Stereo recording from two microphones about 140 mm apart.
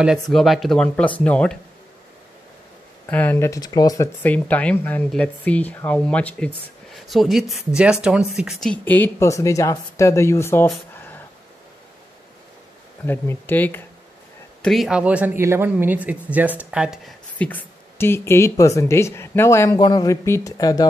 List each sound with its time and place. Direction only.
0.0 s speech: centre (ahead or behind)
3.1 s speech: 15° left (ahead or behind)
4.2 s speech: 10° left (ahead or behind)
11.0 s a sound: 10° left (ahead or behind)
13.0 s speech: 15° left (ahead or behind)
14.6 s speech: centre (ahead or behind)
17.4 s speech: 10° left (ahead or behind)